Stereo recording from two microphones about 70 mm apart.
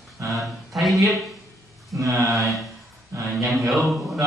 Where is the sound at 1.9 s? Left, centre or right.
Right.